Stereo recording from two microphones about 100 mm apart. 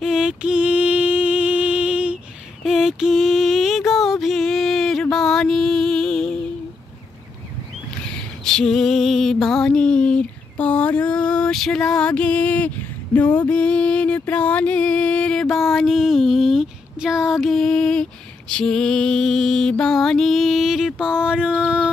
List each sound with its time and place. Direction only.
0.0 s mantra: 5° right (ahead or behind)
5.1 s music: 5° left (ahead or behind)
8.5 s a sound: 5° left (ahead or behind)
18.5 s mantra: 5° left (ahead or behind); by 21.6 s 10° right (ahead or behind)